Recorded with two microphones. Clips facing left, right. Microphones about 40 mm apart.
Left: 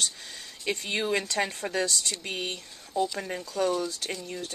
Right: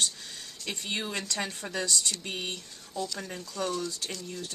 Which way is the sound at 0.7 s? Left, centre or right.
Left.